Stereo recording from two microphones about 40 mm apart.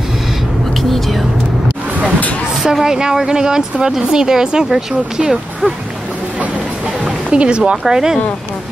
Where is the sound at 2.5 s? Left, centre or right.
Centre.